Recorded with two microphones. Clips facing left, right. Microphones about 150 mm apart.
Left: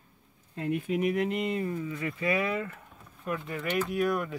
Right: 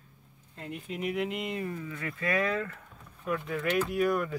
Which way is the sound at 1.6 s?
20° left (ahead or behind).